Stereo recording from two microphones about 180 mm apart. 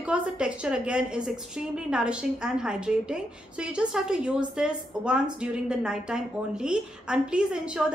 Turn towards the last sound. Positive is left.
turn(degrees=-5)  # may be behind; listen again after turning